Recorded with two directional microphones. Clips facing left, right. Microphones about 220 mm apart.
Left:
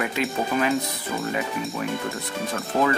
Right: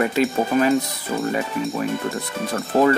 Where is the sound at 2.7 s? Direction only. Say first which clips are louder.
Right 6 dB; 35° right (ahead or behind).